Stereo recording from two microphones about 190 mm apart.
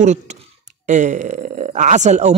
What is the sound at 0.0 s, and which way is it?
Speech, 40° right (ahead or behind).